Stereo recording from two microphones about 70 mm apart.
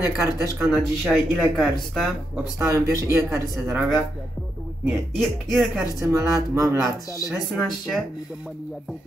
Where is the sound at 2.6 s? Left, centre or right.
Right.